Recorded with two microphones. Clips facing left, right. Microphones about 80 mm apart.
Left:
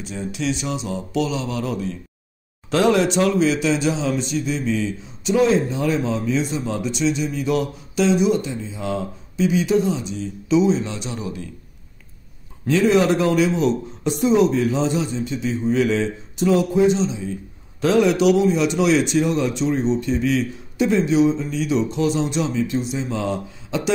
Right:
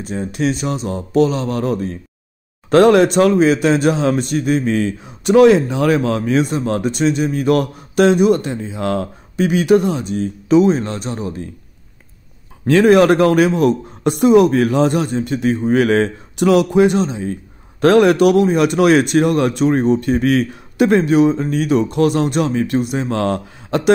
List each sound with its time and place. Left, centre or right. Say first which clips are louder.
0.0 s speech: right 6 dB; right
12.6 s speech: right 6 dB; right